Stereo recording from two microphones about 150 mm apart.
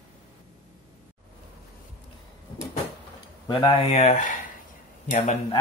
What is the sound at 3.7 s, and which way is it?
Speech, 45° left (ahead or behind).